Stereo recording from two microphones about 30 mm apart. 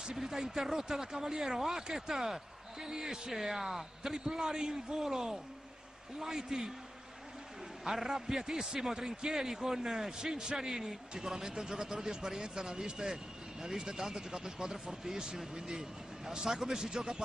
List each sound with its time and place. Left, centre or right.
0.0 s a man's voice: centre
4.1 s a man's voice: right
7.8 s a man's voice: centre